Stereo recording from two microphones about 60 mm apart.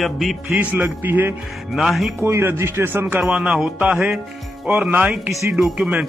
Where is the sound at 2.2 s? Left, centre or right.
Right.